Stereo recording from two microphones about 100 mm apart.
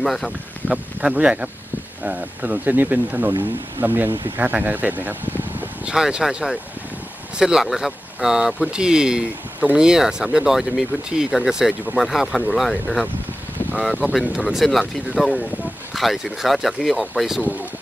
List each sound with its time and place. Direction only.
0.0 s speech: 5° left (ahead or behind)
0.7 s speech: 10° right (ahead or behind)
14.2 s speech: 5° right (ahead or behind)